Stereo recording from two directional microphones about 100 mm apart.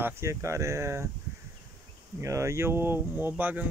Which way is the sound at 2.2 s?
30° right (ahead or behind).